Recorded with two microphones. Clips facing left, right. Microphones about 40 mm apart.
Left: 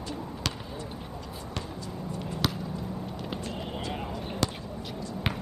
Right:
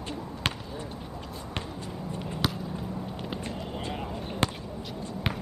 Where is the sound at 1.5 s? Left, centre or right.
Right.